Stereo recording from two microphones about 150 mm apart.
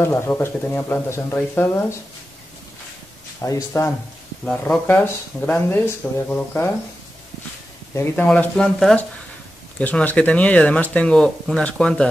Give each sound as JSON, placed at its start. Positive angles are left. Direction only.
{"t": 0.0, "sound": "speech", "side_deg": 15}
{"t": 3.4, "sound": "speech", "side_deg": 20}
{"t": 4.5, "sound": "speech", "side_deg": 10}
{"t": 7.9, "sound": "speech", "side_deg": 15}